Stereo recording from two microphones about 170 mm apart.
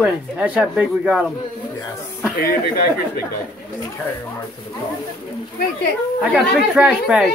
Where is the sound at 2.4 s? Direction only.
60° left (ahead or behind).